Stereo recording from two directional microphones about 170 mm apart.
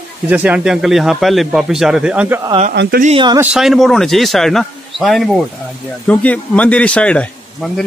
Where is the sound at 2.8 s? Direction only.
85° right.